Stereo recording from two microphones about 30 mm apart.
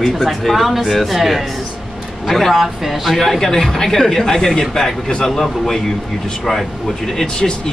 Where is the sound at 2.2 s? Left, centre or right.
Centre.